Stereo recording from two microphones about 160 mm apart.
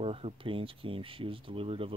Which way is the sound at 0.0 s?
35° right (ahead or behind).